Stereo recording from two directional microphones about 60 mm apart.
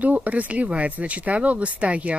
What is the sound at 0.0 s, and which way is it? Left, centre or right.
Speech, right.